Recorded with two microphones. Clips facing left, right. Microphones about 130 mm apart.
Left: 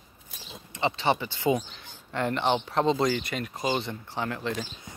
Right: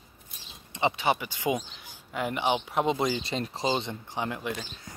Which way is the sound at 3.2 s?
30° right (ahead or behind).